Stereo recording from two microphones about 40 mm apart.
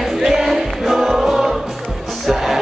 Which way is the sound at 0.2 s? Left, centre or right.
Centre.